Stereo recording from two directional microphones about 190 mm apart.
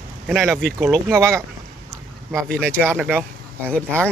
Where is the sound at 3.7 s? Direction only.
5° left (ahead or behind).